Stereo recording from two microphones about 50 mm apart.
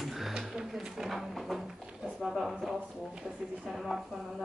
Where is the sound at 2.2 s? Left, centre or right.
Centre.